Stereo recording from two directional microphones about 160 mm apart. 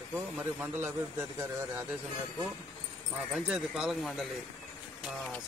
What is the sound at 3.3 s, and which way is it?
Speech, 5° right (ahead or behind).